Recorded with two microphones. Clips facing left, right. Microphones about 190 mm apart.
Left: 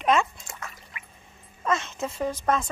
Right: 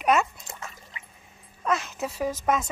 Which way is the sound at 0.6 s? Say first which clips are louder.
Even; 25° right (ahead or behind).